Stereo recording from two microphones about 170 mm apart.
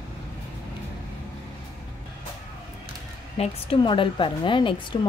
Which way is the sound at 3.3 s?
30° left (ahead or behind).